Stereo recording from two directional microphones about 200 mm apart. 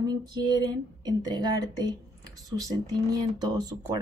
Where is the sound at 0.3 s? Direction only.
20° right (ahead or behind).